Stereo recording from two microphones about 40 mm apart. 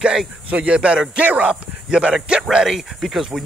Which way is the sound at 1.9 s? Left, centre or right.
Right.